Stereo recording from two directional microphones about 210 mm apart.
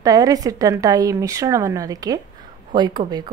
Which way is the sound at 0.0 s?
15° right (ahead or behind).